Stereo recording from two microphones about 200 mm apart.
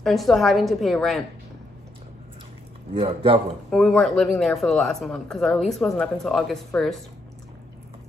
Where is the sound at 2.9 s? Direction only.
25° right (ahead or behind).